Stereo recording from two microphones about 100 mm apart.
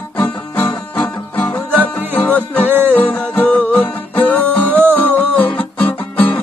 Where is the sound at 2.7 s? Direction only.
20° right (ahead or behind).